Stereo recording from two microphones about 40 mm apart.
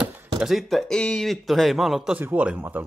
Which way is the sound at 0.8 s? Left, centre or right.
Left.